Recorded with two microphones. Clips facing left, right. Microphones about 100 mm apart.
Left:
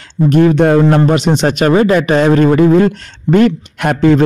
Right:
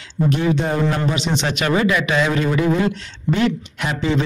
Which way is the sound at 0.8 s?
50° left (ahead or behind).